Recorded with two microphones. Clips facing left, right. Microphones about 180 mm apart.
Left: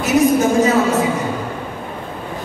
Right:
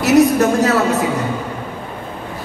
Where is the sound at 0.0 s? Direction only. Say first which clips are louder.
Right 2 dB; 70° right (ahead or behind).